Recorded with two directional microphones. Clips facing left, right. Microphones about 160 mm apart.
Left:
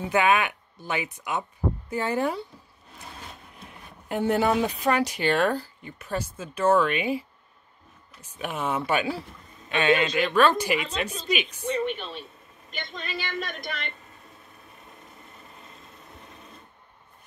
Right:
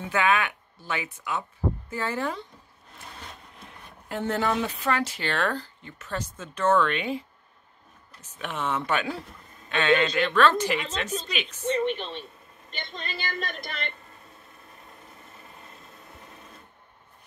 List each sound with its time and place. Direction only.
0.1 s speech: 15° left (ahead or behind)
4.1 s speech: 15° left (ahead or behind)
12.7 s music: centre (ahead or behind)